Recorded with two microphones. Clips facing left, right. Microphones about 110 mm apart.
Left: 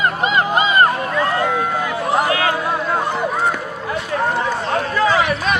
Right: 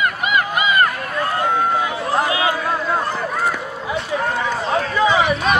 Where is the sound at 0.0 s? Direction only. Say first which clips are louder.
Left 2 dB; 30° left (ahead or behind).